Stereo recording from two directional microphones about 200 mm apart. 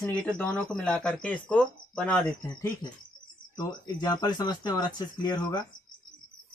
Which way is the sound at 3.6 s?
20° left (ahead or behind).